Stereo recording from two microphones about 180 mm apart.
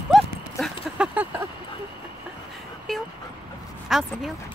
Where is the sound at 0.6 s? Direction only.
10° right (ahead or behind).